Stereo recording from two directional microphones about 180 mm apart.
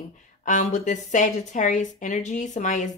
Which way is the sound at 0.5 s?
45° left (ahead or behind).